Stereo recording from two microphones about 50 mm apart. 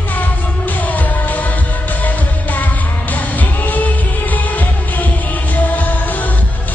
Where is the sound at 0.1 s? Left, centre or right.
Left.